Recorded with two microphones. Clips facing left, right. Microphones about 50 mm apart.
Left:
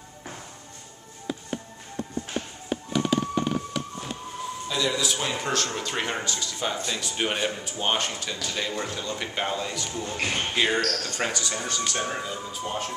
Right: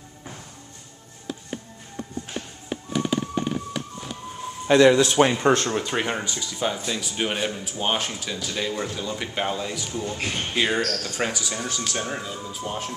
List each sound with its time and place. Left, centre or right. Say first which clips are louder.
2.7 s music: even; centre
4.6 s speech: right 12 dB; right
5.4 s speech: right 7 dB; right
5.8 s speech: right 3 dB; centre
10.2 s speech: left 5 dB; centre
10.5 s speech: right 2 dB; centre